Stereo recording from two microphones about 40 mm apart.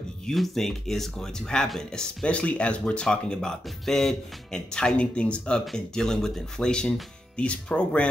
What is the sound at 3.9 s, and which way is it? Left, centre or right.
Speech, centre.